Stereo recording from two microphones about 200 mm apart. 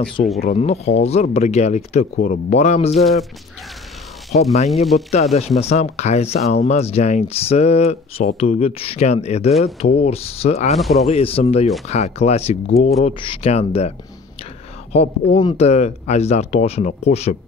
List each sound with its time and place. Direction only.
0.2 s speech: 35° left (ahead or behind)
3.0 s speech: centre (ahead or behind)
4.9 s speech: 30° left (ahead or behind)
10.8 s speech: centre (ahead or behind)
11.1 s speech: 30° left (ahead or behind)
14.9 s speech: 30° left (ahead or behind)